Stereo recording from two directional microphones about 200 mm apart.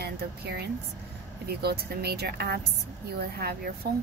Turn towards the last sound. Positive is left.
turn(degrees=-50)  # may be behind; listen again after turning